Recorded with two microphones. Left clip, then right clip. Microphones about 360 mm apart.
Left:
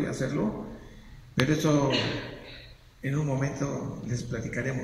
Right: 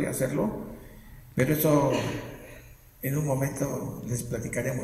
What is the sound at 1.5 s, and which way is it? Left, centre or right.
Speech, centre.